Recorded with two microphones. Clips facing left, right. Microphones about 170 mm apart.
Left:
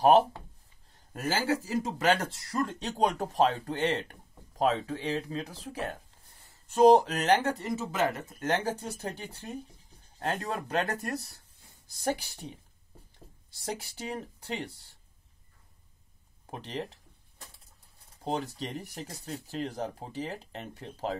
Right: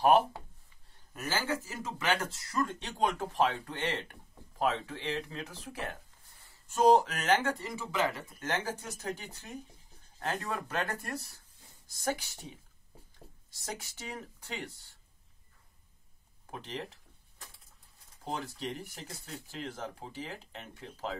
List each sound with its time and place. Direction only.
0.0 s speech: 35° left (ahead or behind)
7.6 s speech: 20° left (ahead or behind)
13.7 s speech: 30° left (ahead or behind)
16.4 s speech: 35° left (ahead or behind)
18.2 s speech: 35° left (ahead or behind)